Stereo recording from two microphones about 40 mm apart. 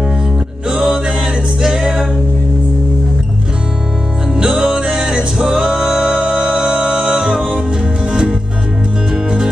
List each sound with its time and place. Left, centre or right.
0.7 s a capella: right
4.5 s music: centre